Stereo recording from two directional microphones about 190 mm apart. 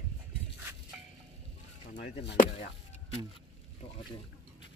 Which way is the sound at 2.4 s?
45° left (ahead or behind).